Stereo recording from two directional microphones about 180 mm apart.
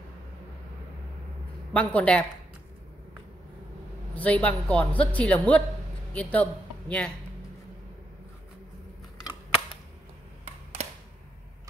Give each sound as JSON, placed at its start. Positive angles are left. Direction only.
{"t": 1.7, "sound": "speech", "side_deg": 10}
{"t": 4.1, "sound": "speech", "side_deg": 10}
{"t": 10.4, "sound": "a sound", "side_deg": -35}